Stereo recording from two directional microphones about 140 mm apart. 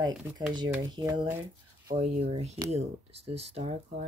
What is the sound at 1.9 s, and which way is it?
Speech, 50° right (ahead or behind).